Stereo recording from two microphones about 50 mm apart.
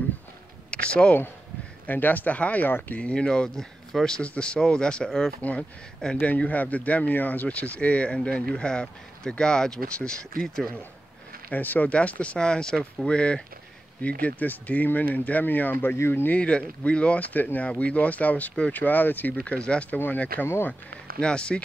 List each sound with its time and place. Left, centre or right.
0.7 s a sound: left
1.9 s speech: left; by 4.1 s centre
4.2 s speech: left
5.4 s speech: left
11.5 s speech: left
11.9 s speech: left
12.4 s speech: centre
14.0 s speech: left
16.3 s speech: left
19.5 s speech: centre
21.2 s speech: centre